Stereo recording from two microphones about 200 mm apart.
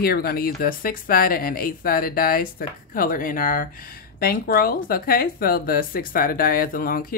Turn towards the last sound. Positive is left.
turn(degrees=45)  # may be behind; listen again after turning